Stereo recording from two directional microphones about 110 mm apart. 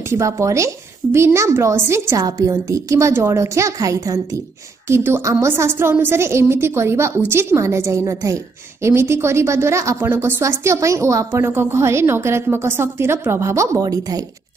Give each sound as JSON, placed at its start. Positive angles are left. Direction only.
{"t": 0.1, "sound": "a woman's voice", "side_deg": -25}